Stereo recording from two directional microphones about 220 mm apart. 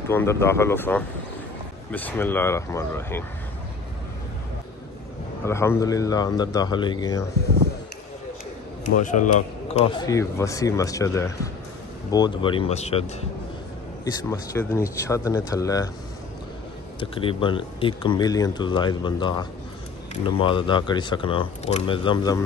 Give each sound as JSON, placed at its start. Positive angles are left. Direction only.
{"t": 0.1, "sound": "a man's voice", "side_deg": 10}
{"t": 5.4, "sound": "a man's voice", "side_deg": 10}
{"t": 9.0, "sound": "a man's voice", "side_deg": 35}
{"t": 9.8, "sound": "a man's voice", "side_deg": 20}
{"t": 14.3, "sound": "a man's voice", "side_deg": 15}
{"t": 17.0, "sound": "speech", "side_deg": 25}